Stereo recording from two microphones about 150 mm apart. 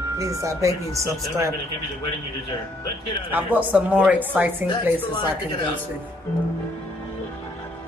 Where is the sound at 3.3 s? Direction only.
10° right (ahead or behind).